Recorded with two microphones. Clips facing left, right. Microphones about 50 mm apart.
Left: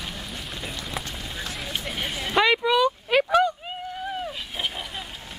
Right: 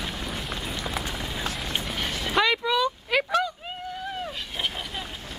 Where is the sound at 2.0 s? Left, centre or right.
Centre.